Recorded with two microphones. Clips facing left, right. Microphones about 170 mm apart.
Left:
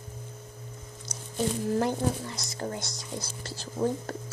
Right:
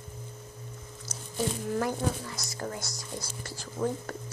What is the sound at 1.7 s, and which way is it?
Speech, 25° left (ahead or behind).